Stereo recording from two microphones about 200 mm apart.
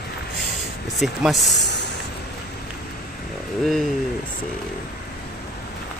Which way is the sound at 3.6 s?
Centre (ahead or behind).